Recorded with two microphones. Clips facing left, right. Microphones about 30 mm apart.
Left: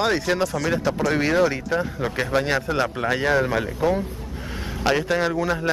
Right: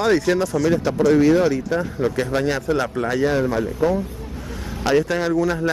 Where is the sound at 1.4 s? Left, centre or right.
Left.